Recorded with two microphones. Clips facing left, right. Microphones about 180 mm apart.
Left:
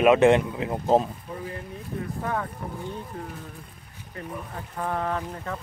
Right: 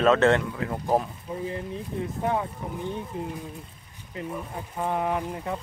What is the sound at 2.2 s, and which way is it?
Speech, 20° right (ahead or behind).